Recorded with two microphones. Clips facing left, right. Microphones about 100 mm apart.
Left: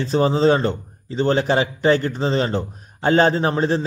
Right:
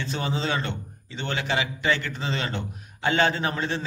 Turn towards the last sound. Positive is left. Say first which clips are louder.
# left 8 dB
turn(degrees=35)  # may be behind; listen again after turning